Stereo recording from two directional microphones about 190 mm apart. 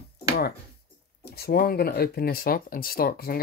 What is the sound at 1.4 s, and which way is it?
Speech, 55° left (ahead or behind).